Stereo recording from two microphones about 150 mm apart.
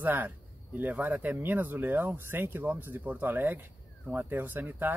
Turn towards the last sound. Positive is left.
turn(degrees=-15)  # may be behind; listen again after turning